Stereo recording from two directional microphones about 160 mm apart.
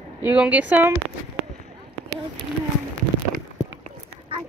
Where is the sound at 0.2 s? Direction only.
10° right (ahead or behind).